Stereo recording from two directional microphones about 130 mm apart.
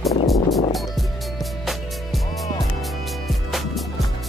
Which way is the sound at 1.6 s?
Centre (ahead or behind).